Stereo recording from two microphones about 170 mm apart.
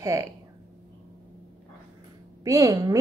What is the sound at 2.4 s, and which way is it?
Speech, 20° right (ahead or behind).